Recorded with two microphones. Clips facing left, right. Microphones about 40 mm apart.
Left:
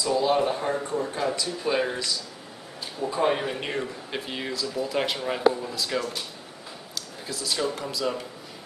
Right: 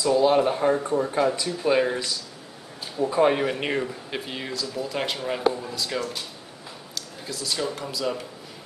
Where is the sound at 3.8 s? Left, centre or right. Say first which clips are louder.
Right 2 dB; centre.